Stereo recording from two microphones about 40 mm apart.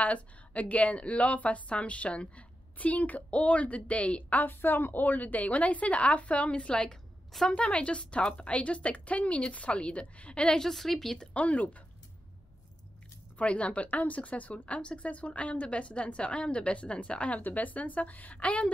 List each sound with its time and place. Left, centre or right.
0.0 s speech: left
4.6 s speech: left
6.7 s a woman's voice: left
10.6 s speech: centre
11.3 s speech: left
13.4 s speech: left
17.4 s a woman's voice: left